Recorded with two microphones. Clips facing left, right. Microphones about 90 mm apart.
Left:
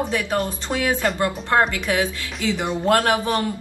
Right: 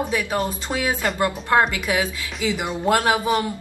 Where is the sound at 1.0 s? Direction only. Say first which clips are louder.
Even; 10° right (ahead or behind).